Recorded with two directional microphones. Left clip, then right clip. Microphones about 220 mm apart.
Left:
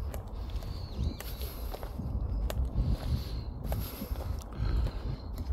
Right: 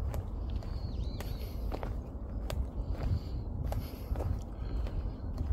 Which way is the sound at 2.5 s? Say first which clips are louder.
Left 4 dB; 25° left (ahead or behind).